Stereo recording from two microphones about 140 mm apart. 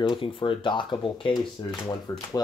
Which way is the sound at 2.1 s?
20° left (ahead or behind).